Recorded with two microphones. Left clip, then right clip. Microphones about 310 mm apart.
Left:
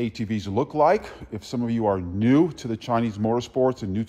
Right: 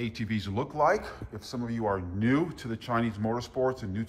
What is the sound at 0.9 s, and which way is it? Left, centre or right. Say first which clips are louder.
Speech: left 6 dB; centre.